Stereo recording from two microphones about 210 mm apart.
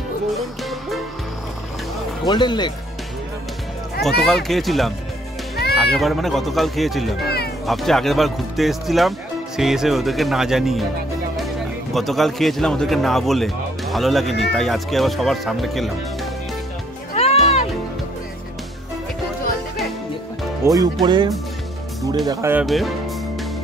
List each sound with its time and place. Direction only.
0.4 s music: centre (ahead or behind)
2.2 s speech: 20° left (ahead or behind)
4.2 s speech: centre (ahead or behind)
7.2 s cat: 50° left (ahead or behind)
7.6 s speech: centre (ahead or behind)
17.1 s music: 30° left (ahead or behind)
20.6 s speech: 15° right (ahead or behind); by 22.9 s centre (ahead or behind)